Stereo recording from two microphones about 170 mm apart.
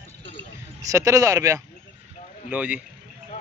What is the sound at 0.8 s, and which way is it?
Speech, 20° right (ahead or behind).